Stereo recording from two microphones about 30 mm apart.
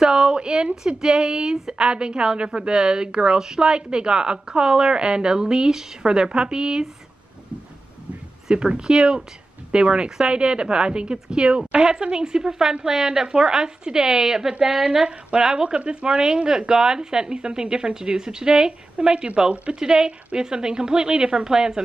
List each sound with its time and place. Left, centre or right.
0.0 s a sound: right
0.8 s a woman's voice: right
3.3 s a woman's voice: centre
3.6 s a woman's voice: right
8.5 s a woman's voice: right
15.8 s a woman's voice: right
16.4 s a woman's voice: centre
18.9 s a woman's voice: right
19.8 s a woman's voice: right